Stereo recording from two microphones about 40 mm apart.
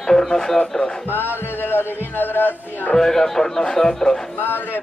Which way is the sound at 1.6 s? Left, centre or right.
Left.